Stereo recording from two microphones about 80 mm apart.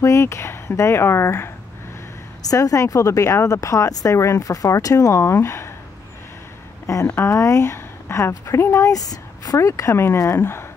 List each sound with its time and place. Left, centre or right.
0.0 s speech: left
2.4 s speech: left
7.1 s speech: left
9.6 s speech: left